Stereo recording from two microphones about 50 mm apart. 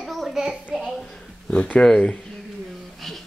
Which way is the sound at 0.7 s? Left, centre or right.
Centre.